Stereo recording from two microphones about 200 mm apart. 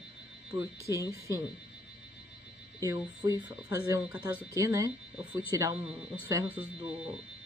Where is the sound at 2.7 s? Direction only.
15° right (ahead or behind).